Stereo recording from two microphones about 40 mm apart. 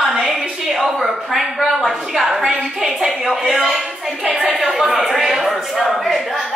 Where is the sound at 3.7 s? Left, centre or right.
Centre.